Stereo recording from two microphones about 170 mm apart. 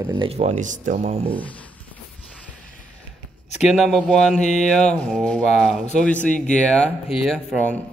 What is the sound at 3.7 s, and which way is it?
Speech, centre (ahead or behind).